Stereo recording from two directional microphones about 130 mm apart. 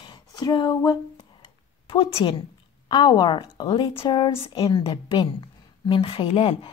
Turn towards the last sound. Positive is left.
turn(degrees=45)  # may be behind; listen again after turning